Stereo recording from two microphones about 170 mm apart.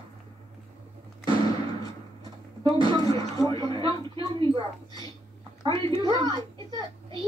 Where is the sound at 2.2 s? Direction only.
30° right (ahead or behind).